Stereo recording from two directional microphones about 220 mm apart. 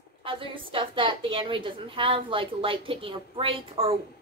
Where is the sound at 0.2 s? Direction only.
25° right (ahead or behind).